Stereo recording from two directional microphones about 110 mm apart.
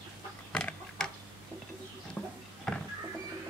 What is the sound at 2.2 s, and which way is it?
Horse, 10° left (ahead or behind).